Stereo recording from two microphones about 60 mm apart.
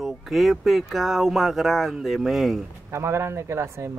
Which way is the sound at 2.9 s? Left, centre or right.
Right.